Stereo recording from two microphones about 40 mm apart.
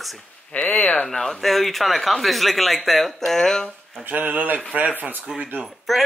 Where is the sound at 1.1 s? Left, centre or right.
Centre.